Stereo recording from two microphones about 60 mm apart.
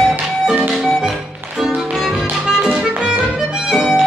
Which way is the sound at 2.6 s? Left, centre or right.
Centre.